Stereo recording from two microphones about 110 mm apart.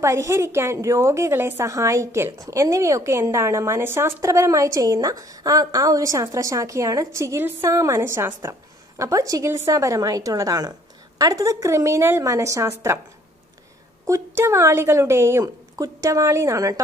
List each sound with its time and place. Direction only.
0.0 s a woman's voice: 30° right (ahead or behind)
14.0 s a woman's voice: 25° right (ahead or behind)